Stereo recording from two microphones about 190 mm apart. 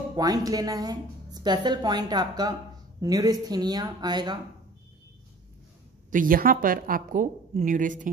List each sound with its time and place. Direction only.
0.1 s a woman's voice: 20° right (ahead or behind)
6.0 s a woman's voice: 45° right (ahead or behind)